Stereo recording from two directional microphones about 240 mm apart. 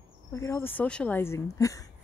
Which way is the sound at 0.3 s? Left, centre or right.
Centre.